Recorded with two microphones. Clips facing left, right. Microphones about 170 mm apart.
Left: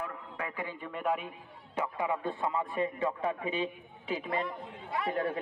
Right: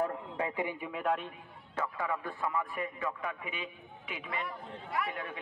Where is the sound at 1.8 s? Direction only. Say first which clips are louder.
Left 3 dB; 20° left (ahead or behind).